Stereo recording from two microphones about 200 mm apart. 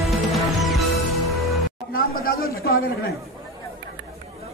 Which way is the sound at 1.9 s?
45° left (ahead or behind).